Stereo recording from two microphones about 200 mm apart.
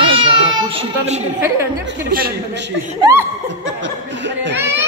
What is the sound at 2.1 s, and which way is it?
Speech, 55° right (ahead or behind).